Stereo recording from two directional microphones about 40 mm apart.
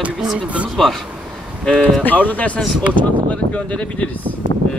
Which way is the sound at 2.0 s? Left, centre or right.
Left.